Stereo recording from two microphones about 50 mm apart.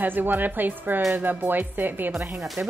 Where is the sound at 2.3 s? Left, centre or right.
Centre.